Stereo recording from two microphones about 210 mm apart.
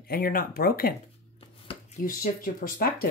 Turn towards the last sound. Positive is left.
turn(degrees=45)  # may be behind; listen again after turning